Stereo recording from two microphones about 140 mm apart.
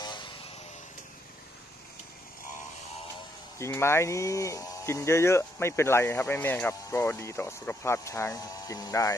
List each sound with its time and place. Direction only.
0.0 s vehicle: 35° left (ahead or behind)
3.5 s speech: 20° left (ahead or behind)